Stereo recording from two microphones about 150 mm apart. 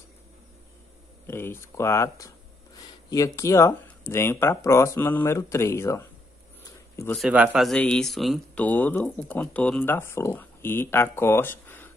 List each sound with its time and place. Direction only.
1.2 s speech: 15° left (ahead or behind)
7.2 s speech: 10° right (ahead or behind)
8.6 s speech: 10° left (ahead or behind)